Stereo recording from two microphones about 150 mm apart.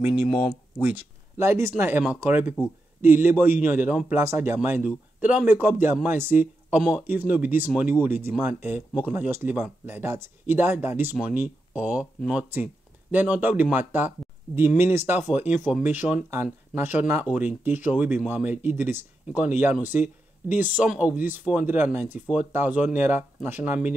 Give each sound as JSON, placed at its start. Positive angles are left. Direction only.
{"t": 0.7, "sound": "speech", "side_deg": -10}